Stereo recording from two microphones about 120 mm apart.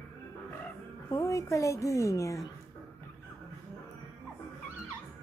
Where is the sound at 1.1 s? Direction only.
25° left (ahead or behind).